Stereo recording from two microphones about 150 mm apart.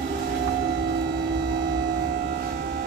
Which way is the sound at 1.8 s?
90° right.